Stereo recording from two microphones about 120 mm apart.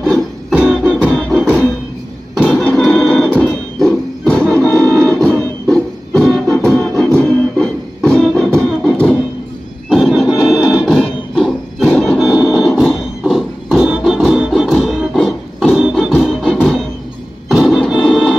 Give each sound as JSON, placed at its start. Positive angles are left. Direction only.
{"t": 0.0, "sound": "music", "side_deg": 0}
{"t": 2.5, "sound": "music", "side_deg": 5}
{"t": 9.8, "sound": "a sound", "side_deg": 0}
{"t": 13.2, "sound": "music", "side_deg": -5}
{"t": 16.2, "sound": "organ", "side_deg": 0}